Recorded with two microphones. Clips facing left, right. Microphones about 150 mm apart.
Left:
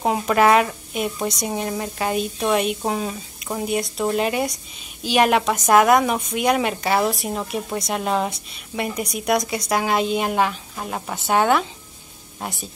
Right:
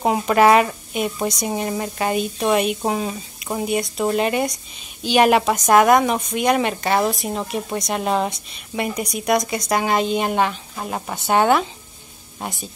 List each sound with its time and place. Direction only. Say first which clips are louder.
0.0 s a woman's voice: right 2 dB; 5° right (ahead or behind)